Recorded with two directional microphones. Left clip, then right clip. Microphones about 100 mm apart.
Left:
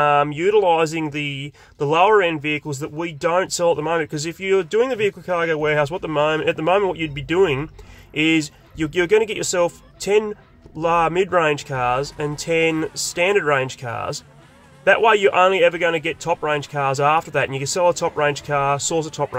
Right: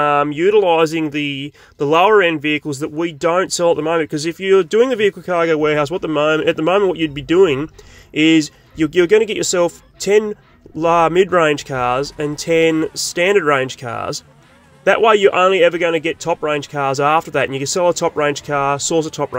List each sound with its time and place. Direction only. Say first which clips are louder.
0.0 s speech: right 2 dB; 25° right (ahead or behind)